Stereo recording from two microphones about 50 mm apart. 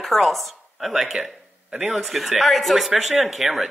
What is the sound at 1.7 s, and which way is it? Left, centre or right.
Speech, right.